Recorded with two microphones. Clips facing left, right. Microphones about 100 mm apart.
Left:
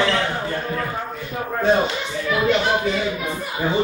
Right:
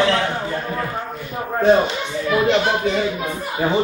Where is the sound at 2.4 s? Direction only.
30° right (ahead or behind).